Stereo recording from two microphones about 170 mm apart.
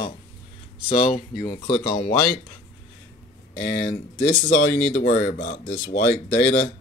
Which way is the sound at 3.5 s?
90° left.